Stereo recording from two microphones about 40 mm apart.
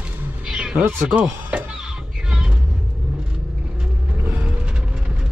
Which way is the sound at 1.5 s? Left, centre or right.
Right.